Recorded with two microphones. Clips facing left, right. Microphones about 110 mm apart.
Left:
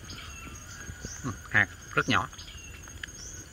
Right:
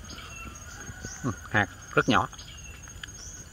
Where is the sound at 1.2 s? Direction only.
35° right (ahead or behind).